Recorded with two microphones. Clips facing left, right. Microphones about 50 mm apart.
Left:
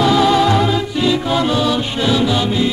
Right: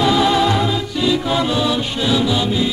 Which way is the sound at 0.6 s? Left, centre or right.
Centre.